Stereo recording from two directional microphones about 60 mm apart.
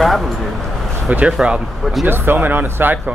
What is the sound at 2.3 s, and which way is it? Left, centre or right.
Speech, right.